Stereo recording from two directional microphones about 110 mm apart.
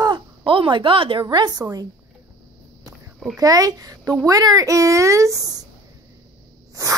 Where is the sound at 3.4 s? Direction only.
35° right (ahead or behind).